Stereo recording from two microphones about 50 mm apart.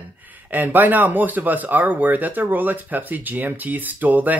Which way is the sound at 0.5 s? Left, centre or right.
Right.